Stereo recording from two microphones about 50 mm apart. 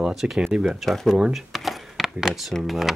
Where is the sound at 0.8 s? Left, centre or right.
Centre.